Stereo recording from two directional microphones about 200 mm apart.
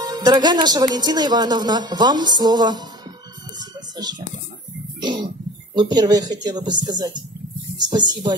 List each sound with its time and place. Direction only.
0.0 s a woman's voice: 20° right (ahead or behind)
3.5 s music: 20° right (ahead or behind)
5.0 s a woman's voice: 20° right (ahead or behind)